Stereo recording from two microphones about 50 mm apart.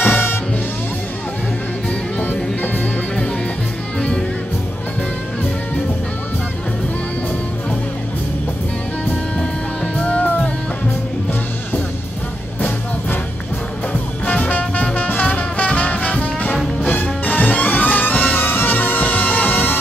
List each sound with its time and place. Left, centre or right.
0.0 s music: left
2.1 s music: left
12.5 s music: left
14.2 s music: left